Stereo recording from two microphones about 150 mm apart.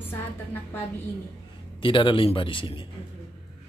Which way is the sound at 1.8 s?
35° left (ahead or behind).